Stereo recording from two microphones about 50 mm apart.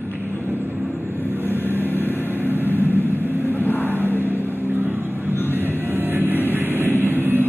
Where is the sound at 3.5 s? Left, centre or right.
Left.